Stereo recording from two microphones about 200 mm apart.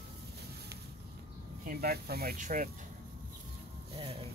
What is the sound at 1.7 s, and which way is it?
Speech, 50° right (ahead or behind).